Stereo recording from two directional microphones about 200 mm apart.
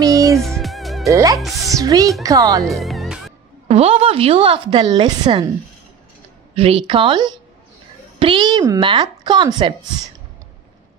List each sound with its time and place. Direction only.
0.0 s music: 15° right (ahead or behind)
0.4 s music: centre (ahead or behind)
1.1 s speech: 15° right (ahead or behind)
2.6 s music: centre (ahead or behind)
3.6 s a woman's voice: 30° right (ahead or behind)
6.5 s a woman's voice: 30° right (ahead or behind)